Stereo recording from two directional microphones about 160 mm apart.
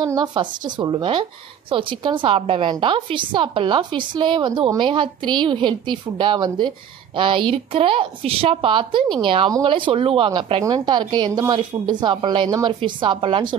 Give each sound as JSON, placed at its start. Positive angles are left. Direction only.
{"t": 0.0, "sound": "a woman's voice", "side_deg": -25}